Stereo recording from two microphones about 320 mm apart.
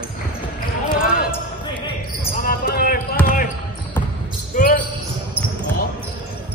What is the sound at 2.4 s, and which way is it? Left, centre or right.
Basketball bounce, left.